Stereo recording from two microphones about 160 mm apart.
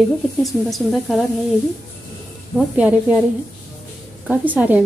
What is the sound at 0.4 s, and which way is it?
Speech, centre (ahead or behind).